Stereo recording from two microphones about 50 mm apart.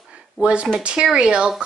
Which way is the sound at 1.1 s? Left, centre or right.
Centre.